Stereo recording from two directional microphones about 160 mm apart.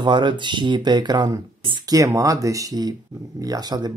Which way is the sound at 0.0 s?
30° right (ahead or behind).